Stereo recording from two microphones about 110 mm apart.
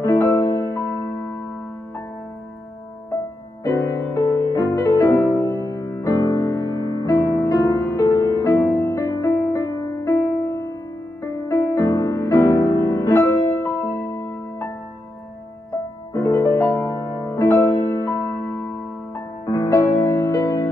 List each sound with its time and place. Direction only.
0.0 s music: 25° left (ahead or behind)
4.1 s music: 25° left (ahead or behind)
16.1 s music: 30° left (ahead or behind)
19.4 s music: 30° left (ahead or behind)